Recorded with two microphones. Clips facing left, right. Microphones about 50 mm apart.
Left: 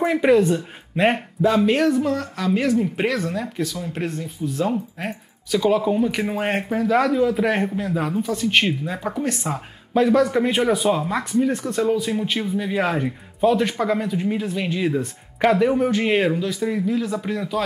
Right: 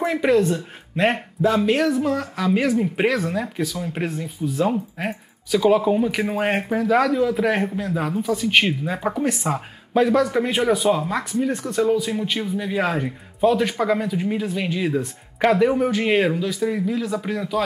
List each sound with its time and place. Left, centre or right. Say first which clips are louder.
0.0 s speech: left 2 dB; centre